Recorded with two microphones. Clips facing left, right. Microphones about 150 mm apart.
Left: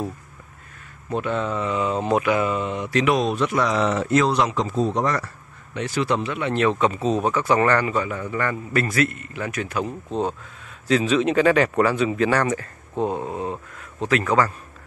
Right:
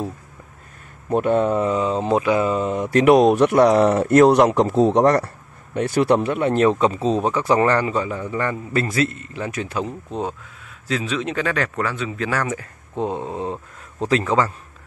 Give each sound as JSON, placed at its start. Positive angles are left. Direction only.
{"t": 1.1, "sound": "speech", "side_deg": -50}
{"t": 6.8, "sound": "a man's voice", "side_deg": -30}
{"t": 10.9, "sound": "speech", "side_deg": 0}
{"t": 12.3, "sound": "speech", "side_deg": -5}
{"t": 14.0, "sound": "a man's voice", "side_deg": -25}